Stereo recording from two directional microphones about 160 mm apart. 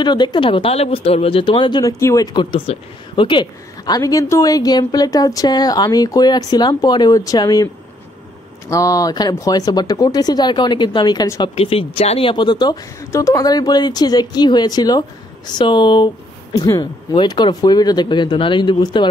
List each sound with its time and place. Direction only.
0.0 s speech: 30° left (ahead or behind)
2.3 s speech: 35° left (ahead or behind)
11.5 s speech: 35° left (ahead or behind)